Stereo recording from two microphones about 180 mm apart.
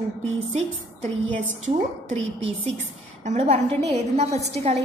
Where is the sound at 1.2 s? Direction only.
90° right.